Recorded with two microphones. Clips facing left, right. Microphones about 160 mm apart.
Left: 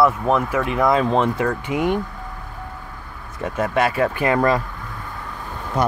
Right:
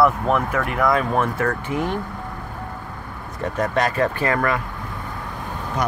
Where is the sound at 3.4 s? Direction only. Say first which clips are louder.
Left 1 dB; 10° left (ahead or behind).